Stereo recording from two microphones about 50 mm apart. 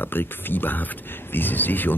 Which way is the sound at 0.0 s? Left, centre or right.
Left.